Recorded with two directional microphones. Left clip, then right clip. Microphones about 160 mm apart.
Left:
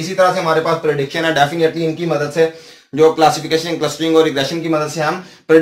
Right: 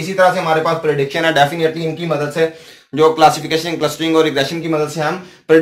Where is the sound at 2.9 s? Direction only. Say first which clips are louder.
Right 1 dB; 15° right (ahead or behind).